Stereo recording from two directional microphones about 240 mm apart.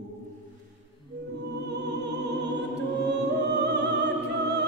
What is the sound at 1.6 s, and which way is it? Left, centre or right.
Music, right.